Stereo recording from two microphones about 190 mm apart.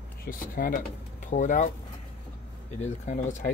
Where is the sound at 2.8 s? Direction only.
40° left (ahead or behind).